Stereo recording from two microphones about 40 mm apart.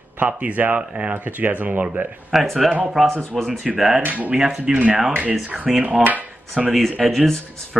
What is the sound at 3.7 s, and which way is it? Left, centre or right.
Speech, centre.